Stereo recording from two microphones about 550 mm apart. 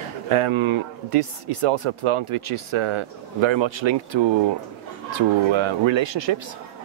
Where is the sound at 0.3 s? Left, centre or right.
Right.